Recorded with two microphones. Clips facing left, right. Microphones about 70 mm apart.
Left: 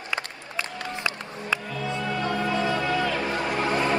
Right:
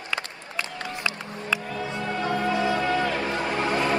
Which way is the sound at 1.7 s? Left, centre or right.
Right.